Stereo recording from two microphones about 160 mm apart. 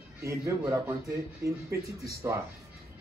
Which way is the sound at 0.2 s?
20° right (ahead or behind).